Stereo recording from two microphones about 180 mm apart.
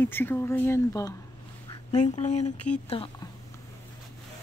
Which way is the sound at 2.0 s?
40° left (ahead or behind).